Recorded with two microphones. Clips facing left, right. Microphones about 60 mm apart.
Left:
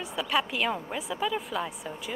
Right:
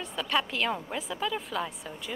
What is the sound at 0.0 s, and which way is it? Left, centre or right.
A woman's voice, centre.